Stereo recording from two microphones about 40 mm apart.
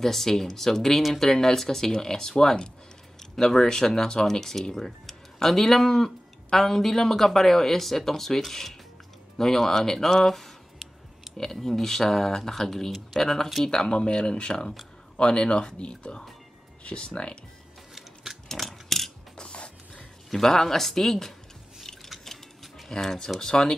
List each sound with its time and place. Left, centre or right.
0.0 s speech: centre
11.3 s a sound: centre
11.6 s speech: centre
13.7 s speech: left
17.9 s scissors: centre
18.6 s ratchet: centre
19.3 s a sound: left
20.2 s speech: centre
22.1 s a sound: centre
22.8 s speech: centre